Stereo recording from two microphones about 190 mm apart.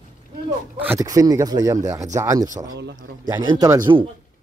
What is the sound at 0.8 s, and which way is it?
A man's voice, 15° right (ahead or behind).